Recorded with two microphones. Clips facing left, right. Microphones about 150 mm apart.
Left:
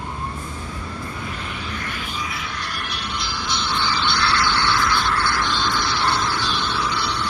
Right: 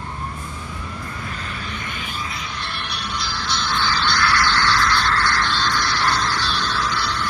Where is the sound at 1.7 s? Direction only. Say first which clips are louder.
Left 1 dB; centre (ahead or behind).